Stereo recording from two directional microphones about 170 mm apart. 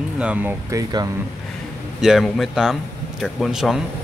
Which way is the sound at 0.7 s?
20° right (ahead or behind).